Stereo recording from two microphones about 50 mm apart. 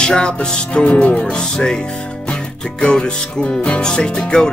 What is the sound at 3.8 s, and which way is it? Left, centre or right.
Music, centre.